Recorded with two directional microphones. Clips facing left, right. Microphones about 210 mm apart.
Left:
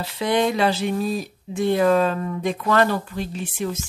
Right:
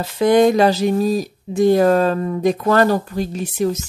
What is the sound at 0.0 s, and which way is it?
Speech, 45° right (ahead or behind).